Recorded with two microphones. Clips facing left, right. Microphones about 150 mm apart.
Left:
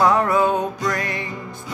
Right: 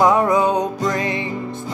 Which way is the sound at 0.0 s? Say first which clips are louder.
Right 2 dB; 20° right (ahead or behind).